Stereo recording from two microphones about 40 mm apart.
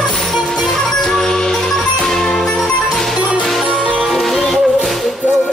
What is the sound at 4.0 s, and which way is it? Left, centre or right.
Music, centre.